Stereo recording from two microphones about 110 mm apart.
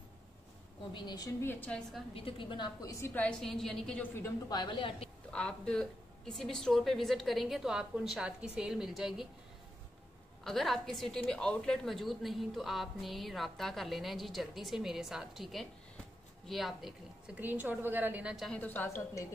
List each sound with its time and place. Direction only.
0.9 s a woman's voice: 40° left (ahead or behind)
1.4 s a woman's voice: 20° left (ahead or behind)
1.7 s a woman's voice: 5° left (ahead or behind)
2.1 s a woman's voice: 55° left (ahead or behind)
2.8 s a woman's voice: 30° left (ahead or behind)
3.2 s a woman's voice: 5° left (ahead or behind)
4.5 s a woman's voice: 45° left (ahead or behind)
5.3 s a woman's voice: 5° left (ahead or behind)
10.4 s a woman's voice: centre (ahead or behind)
17.4 s a woman's voice: 15° right (ahead or behind)
18.3 s a woman's voice: centre (ahead or behind)
18.6 s a woman's voice: 15° left (ahead or behind)